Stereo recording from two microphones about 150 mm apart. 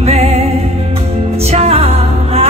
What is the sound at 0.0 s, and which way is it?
Music, 45° right (ahead or behind).